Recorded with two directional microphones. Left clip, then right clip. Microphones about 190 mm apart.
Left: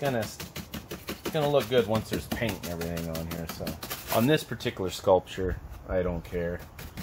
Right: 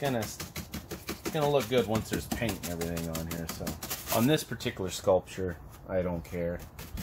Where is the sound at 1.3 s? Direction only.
25° left (ahead or behind).